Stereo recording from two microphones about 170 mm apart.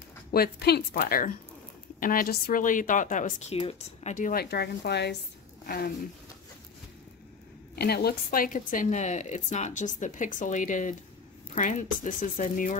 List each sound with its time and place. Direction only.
0.3 s a woman's voice: 65° left (ahead or behind)
7.7 s speech: 70° left (ahead or behind); by 12.7 s 50° left (ahead or behind)